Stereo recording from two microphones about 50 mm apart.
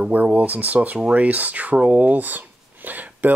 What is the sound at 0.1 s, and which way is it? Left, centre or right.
Speech, right.